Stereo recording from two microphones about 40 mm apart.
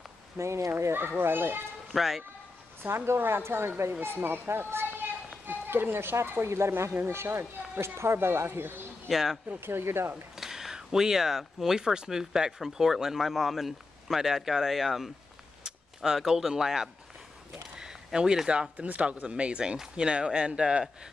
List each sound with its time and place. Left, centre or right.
0.7 s speech: right
1.9 s speech: centre
2.8 s speech: right
3.2 s speech: right
4.0 s speech: right
5.5 s speech: right
9.1 s speech: centre
9.6 s speech: right
10.3 s speech: centre
16.0 s speech: centre
17.7 s a sound: centre
18.5 s speech: right
18.9 s speech: right